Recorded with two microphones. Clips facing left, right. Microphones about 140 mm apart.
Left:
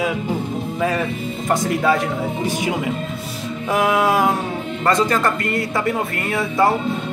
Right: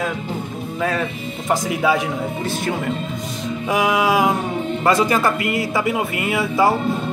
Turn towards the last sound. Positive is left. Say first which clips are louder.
# even
turn(degrees=-5)  # may be behind; listen again after turning